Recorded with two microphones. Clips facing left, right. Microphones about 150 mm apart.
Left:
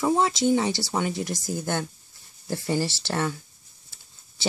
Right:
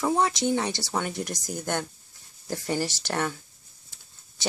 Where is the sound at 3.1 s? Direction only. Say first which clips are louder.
Left 1 dB; 5° left (ahead or behind).